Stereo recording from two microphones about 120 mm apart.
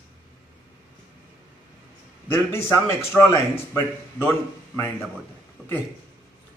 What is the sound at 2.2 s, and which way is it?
A man's voice, 20° left (ahead or behind).